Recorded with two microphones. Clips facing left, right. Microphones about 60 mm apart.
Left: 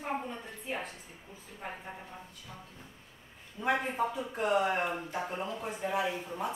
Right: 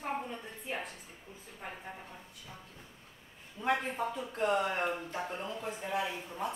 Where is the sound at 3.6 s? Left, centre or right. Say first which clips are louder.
Left 2 dB; centre.